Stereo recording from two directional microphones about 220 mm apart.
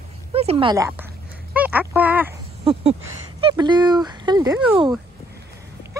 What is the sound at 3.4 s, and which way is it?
Speech, 20° right (ahead or behind).